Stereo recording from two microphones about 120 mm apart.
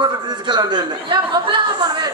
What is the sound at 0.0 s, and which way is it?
A woman's voice, 35° right (ahead or behind).